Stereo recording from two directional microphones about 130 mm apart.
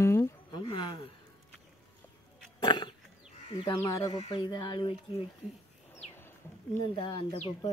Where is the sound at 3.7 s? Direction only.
25° left (ahead or behind).